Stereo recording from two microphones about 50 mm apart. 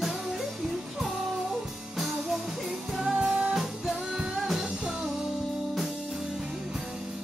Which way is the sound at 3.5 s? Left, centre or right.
Centre.